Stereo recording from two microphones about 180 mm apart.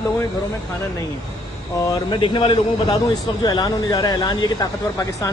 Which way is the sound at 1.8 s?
25° left (ahead or behind).